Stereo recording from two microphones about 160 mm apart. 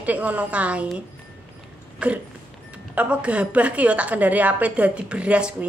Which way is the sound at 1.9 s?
10° right (ahead or behind).